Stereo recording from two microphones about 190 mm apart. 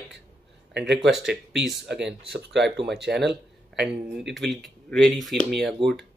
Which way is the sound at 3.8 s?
Centre (ahead or behind).